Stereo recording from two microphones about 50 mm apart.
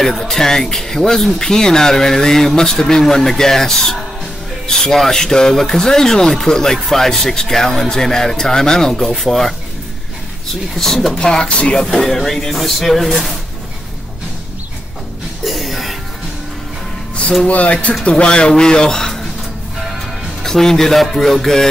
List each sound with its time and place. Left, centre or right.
0.0 s speech: centre
10.7 s speech: centre
11.8 s speech: centre
15.4 s music: centre
17.5 s speech: left; by 19.2 s centre
20.4 s speech: centre